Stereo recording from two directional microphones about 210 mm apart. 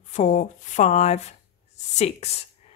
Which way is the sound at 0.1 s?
35° left (ahead or behind).